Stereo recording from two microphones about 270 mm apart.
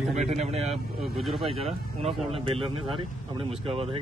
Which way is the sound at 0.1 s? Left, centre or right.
Right.